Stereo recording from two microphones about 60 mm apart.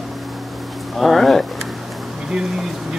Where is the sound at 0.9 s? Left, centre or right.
Centre.